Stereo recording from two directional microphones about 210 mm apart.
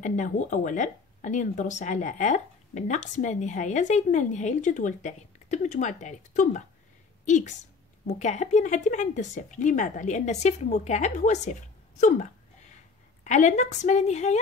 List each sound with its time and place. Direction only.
0.0 s speech: 35° left (ahead or behind)
13.2 s speech: 35° left (ahead or behind)